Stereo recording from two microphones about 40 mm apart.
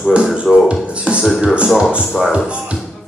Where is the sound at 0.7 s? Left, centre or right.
Right.